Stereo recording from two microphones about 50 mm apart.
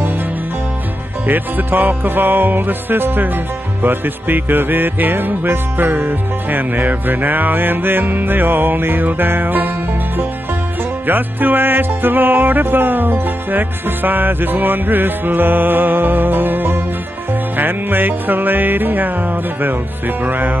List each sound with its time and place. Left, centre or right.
1.2 s music: right
11.1 s music: right